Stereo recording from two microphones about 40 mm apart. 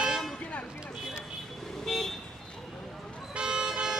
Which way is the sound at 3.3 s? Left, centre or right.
Right.